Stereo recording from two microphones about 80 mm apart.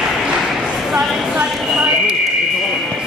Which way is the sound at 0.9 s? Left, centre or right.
Centre.